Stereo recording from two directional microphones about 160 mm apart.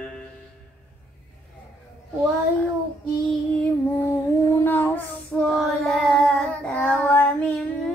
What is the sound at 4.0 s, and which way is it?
Female singing, 15° left (ahead or behind).